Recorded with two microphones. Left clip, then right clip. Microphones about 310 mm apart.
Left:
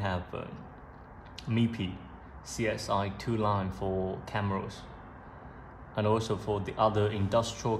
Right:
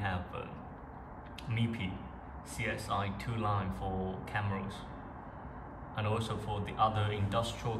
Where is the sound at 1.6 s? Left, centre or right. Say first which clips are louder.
Left 5 dB; centre.